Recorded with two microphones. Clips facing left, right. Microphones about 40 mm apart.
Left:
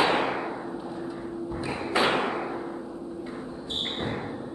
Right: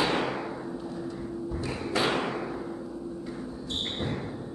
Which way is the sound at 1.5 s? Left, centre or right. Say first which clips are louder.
Left 3 dB; left.